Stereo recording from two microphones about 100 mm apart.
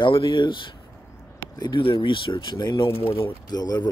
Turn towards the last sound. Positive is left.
turn(degrees=40)  # may be behind; listen again after turning